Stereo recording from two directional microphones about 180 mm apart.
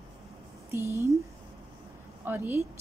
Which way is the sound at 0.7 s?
15° right (ahead or behind).